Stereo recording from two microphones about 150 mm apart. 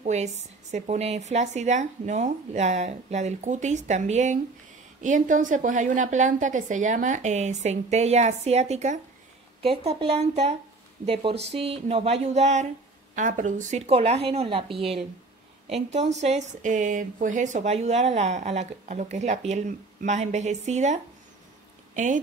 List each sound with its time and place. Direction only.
0.0 s a woman's voice: 50° right (ahead or behind)
9.6 s speech: 40° right (ahead or behind); by 22.2 s 55° right (ahead or behind)